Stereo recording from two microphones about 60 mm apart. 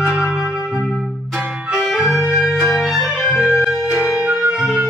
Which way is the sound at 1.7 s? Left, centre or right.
Centre.